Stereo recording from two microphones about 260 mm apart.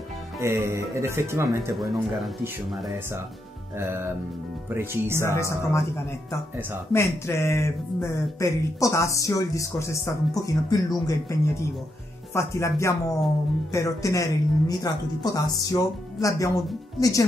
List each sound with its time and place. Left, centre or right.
0.4 s speech: centre
5.2 s speech: centre
6.9 s speech: centre